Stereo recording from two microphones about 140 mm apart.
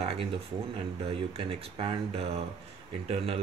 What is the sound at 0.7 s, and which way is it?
Speech, 40° right (ahead or behind).